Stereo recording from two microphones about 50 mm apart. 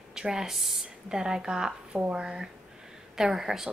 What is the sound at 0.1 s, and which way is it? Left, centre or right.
A woman's voice, centre.